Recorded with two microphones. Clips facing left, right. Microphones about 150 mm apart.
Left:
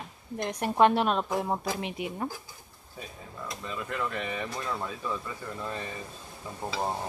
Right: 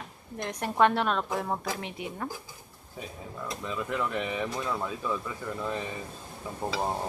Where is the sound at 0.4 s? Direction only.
20° left (ahead or behind).